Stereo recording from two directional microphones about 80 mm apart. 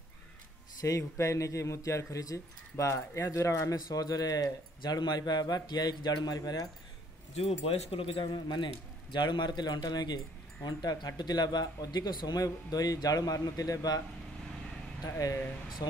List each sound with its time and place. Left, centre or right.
0.7 s speech: left
8.2 s speech: left
15.0 s speech: left
15.8 s speech: left